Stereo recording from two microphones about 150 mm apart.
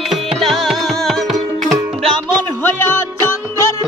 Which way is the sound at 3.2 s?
20° left (ahead or behind).